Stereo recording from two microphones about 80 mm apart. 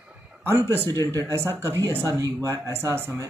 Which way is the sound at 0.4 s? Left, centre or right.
Right.